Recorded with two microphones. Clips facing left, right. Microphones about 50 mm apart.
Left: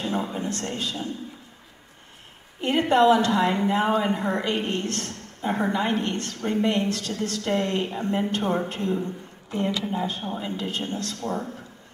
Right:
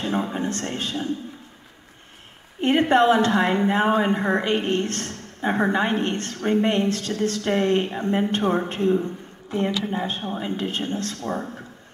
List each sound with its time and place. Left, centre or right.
0.0 s a woman's voice: right
2.6 s a woman's voice: right
8.8 s a man's voice: right
9.5 s a woman's voice: right